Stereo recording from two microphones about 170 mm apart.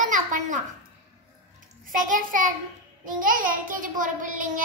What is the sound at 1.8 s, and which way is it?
Child singing, 50° right (ahead or behind).